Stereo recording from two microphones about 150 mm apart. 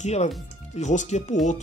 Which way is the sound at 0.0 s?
45° left (ahead or behind).